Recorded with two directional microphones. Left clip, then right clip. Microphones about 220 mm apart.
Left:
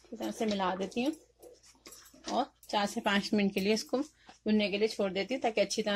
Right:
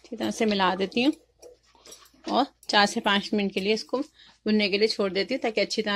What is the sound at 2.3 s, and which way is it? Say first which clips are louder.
Speech: right 9 dB; 30° right (ahead or behind).